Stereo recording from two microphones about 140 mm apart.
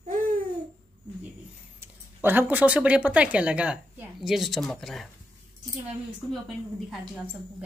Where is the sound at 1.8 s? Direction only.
15° right (ahead or behind); by 5.1 s centre (ahead or behind).